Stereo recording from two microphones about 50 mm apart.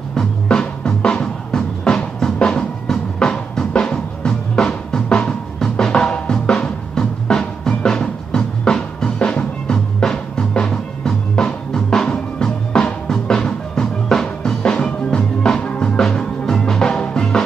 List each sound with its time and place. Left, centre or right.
0.1 s music: centre
4.6 s drum: centre
9.3 s music: left
15.6 s music: left
16.0 s music: centre